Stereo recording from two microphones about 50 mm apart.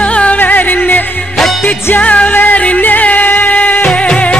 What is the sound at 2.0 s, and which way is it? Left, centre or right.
Music, left.